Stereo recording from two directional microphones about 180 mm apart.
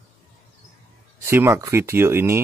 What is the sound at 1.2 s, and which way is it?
Speech, 15° right (ahead or behind).